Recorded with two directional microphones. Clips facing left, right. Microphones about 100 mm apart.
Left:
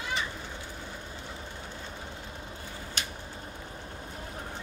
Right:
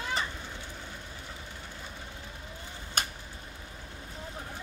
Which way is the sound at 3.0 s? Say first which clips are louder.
Right 5 dB; 50° right (ahead or behind).